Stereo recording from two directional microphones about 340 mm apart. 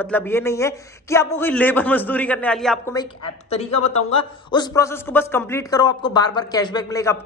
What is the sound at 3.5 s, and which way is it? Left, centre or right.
Speech, centre.